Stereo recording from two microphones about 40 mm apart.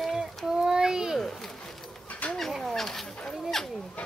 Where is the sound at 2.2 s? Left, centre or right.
Left.